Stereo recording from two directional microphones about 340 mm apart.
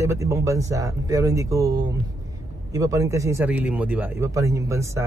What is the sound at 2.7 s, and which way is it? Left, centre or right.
Speech, centre.